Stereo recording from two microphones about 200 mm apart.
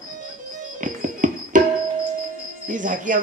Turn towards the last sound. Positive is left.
turn(degrees=-40)  # may be behind; listen again after turning